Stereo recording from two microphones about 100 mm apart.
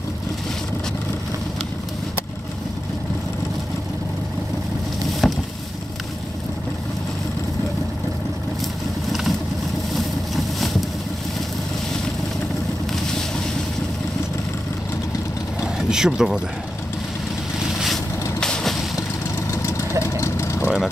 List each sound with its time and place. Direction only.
5.2 s a sound: 5° left (ahead or behind)
9.9 s boat: centre (ahead or behind)
15.6 s vehicle: 5° right (ahead or behind)
18.4 s vehicle: 5° left (ahead or behind)
19.5 s vehicle: 25° left (ahead or behind)
20.6 s vehicle: 10° right (ahead or behind)